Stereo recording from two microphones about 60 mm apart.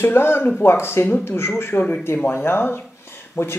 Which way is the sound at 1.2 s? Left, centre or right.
Left.